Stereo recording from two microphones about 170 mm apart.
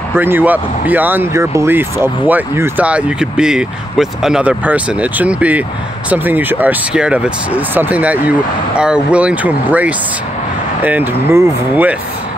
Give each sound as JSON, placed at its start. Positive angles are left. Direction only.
{"t": 0.1, "sound": "speech", "side_deg": -10}